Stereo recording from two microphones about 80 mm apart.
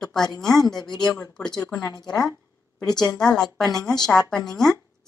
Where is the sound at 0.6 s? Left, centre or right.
Left.